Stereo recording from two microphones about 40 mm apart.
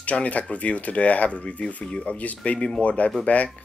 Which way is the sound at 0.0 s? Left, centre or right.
Left.